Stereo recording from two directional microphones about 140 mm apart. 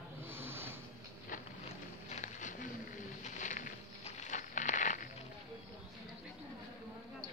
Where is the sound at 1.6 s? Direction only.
55° left (ahead or behind).